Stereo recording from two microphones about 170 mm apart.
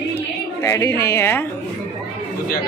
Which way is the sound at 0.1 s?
15° left (ahead or behind).